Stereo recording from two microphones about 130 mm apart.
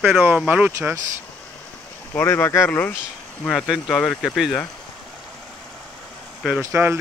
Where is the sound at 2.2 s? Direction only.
15° left (ahead or behind).